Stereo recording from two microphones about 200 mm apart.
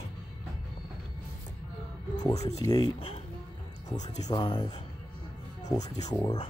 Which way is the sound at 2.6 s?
20° left (ahead or behind).